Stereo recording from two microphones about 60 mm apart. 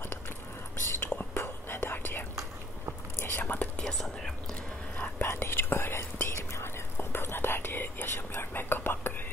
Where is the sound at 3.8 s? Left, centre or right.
Centre.